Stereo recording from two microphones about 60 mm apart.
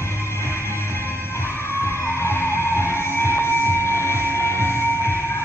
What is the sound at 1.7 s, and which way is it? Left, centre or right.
Music, left.